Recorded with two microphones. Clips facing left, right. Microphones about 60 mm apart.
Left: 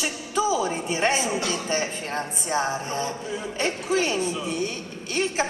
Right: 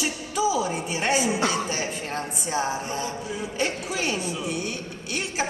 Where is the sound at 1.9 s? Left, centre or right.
Centre.